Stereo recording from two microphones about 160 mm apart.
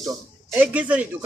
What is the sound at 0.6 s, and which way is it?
Speech, 10° right (ahead or behind).